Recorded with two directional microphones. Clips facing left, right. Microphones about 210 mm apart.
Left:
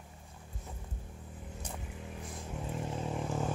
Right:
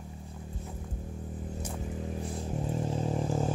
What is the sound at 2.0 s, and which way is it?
Vehicle, 35° right (ahead or behind).